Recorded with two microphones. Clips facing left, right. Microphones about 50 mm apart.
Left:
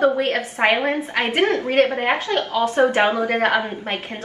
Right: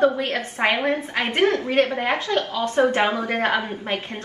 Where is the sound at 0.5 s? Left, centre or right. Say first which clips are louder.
Left 2 dB; left.